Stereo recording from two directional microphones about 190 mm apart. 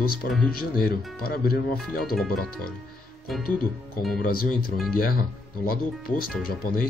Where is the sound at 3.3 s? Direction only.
Centre (ahead or behind).